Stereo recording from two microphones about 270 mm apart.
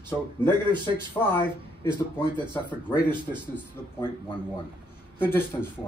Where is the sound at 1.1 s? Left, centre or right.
Centre.